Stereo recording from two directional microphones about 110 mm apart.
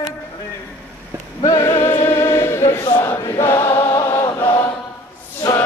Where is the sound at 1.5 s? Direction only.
25° left (ahead or behind).